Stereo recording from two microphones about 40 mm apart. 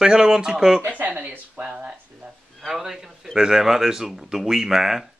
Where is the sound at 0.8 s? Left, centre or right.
Right.